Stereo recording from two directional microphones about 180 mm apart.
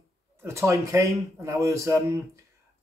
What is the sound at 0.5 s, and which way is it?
Speech, 15° right (ahead or behind).